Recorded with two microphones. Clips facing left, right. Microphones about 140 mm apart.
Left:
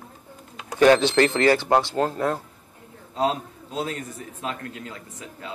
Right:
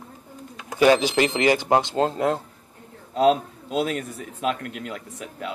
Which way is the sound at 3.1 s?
80° right.